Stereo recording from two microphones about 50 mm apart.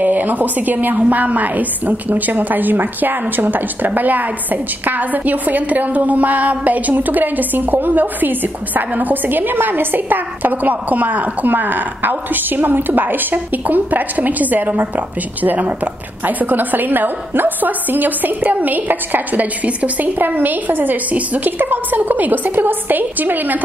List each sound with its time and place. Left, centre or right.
0.0 s a woman's voice: right